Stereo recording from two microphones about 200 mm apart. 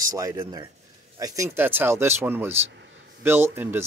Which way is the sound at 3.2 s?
10° right (ahead or behind).